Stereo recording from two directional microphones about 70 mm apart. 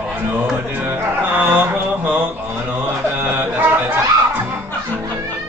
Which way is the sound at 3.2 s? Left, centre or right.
Right.